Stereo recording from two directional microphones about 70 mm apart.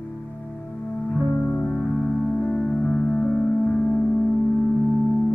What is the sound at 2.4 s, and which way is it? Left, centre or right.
Music, centre.